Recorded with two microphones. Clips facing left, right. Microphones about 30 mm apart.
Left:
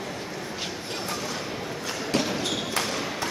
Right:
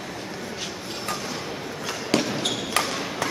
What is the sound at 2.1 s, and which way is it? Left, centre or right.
Basketball bounce, right.